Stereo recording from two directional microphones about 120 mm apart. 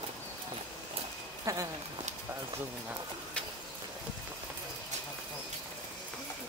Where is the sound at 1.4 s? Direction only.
30° right (ahead or behind).